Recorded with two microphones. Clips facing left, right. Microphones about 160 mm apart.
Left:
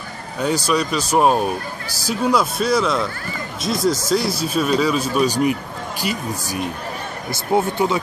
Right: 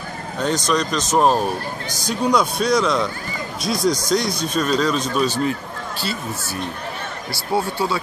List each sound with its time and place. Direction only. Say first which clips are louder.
0.4 s a man's voice: left 1 dB; 10° left (ahead or behind)